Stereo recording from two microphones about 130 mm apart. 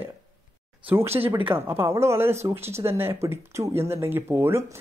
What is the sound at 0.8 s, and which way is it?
Speech, 20° right (ahead or behind).